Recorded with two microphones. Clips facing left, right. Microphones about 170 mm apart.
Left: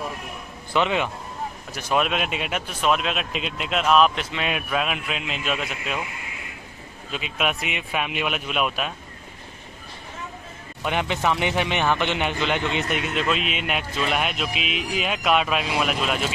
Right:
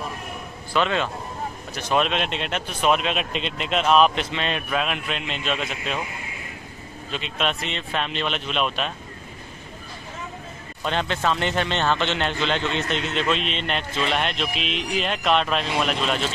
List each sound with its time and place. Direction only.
0.7 s a man's voice: 15° left (ahead or behind)
7.1 s a man's voice: 5° left (ahead or behind)
10.8 s a man's voice: 10° left (ahead or behind)